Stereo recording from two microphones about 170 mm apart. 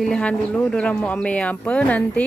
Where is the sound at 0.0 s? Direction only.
5° left (ahead or behind).